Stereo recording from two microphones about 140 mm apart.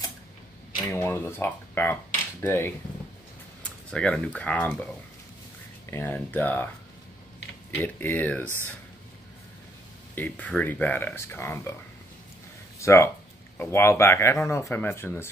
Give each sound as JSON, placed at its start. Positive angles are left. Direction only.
{"t": 0.8, "sound": "speech", "side_deg": 20}
{"t": 3.9, "sound": "speech", "side_deg": 10}
{"t": 5.9, "sound": "speech", "side_deg": 15}
{"t": 7.8, "sound": "speech", "side_deg": 10}
{"t": 10.1, "sound": "speech", "side_deg": 10}
{"t": 12.7, "sound": "speech", "side_deg": 20}